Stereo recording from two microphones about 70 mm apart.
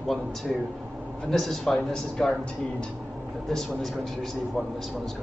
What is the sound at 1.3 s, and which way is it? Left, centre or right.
A man's voice, centre.